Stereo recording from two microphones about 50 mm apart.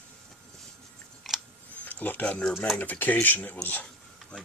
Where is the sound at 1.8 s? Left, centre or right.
Left.